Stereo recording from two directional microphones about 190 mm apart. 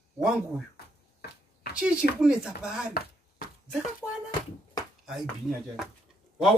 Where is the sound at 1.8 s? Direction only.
5° right (ahead or behind).